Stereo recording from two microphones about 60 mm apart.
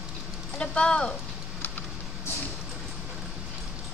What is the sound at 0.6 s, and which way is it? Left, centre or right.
Speech, centre.